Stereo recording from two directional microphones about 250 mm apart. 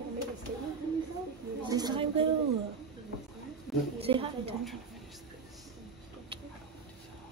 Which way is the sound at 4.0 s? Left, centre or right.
Right.